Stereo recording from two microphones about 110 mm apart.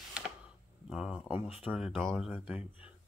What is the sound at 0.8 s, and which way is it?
Speech, 5° right (ahead or behind).